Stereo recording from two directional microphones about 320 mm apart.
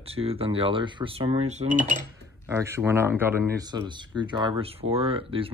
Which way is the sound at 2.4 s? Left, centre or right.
Centre.